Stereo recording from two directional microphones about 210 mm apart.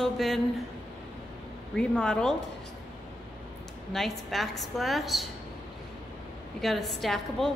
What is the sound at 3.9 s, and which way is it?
A woman's voice, centre (ahead or behind).